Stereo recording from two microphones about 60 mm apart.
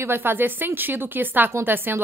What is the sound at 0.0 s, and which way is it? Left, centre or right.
A woman's voice, right.